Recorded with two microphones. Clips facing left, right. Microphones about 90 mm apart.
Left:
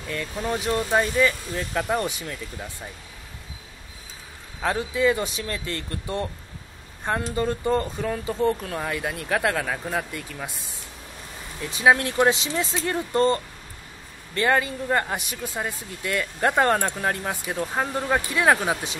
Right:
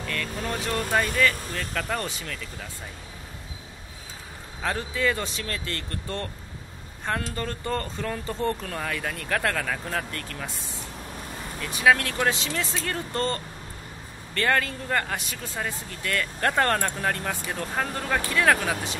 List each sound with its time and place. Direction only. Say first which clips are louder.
0.1 s speech: left 4 dB; 15° left (ahead or behind)
4.6 s speech: left 4 dB; 15° left (ahead or behind)
7.3 s speech: left 6 dB; 15° left (ahead or behind)
11.7 s speech: left 2 dB; 25° left (ahead or behind)